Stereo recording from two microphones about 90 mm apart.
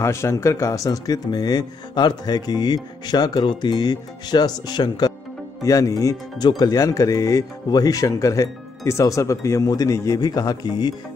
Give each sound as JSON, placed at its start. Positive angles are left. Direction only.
{"t": 0.0, "sound": "speech", "side_deg": 30}
{"t": 5.6, "sound": "speech", "side_deg": 40}